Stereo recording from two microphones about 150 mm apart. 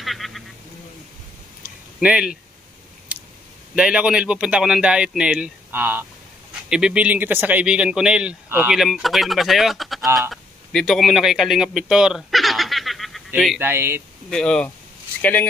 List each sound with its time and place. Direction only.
0.0 s a sound: centre (ahead or behind)
2.0 s speech: 5° right (ahead or behind)
3.7 s speech: 5° right (ahead or behind)
10.3 s a sound: centre (ahead or behind)
13.6 s speech: 15° right (ahead or behind)
14.3 s speech: 5° left (ahead or behind)